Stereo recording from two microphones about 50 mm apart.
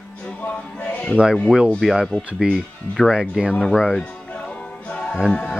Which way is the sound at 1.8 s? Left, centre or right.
Centre.